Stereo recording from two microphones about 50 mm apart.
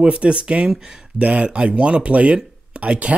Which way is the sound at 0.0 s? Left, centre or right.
Centre.